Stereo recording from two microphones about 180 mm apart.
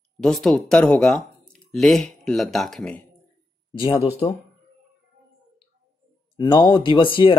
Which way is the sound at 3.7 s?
30° left (ahead or behind).